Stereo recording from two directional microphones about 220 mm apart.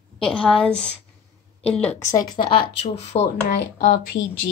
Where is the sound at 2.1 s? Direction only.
20° left (ahead or behind).